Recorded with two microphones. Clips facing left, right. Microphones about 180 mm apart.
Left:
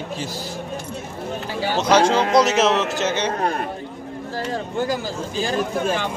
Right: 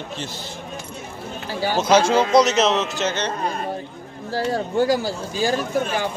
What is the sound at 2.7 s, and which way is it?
Speech, 55° left (ahead or behind).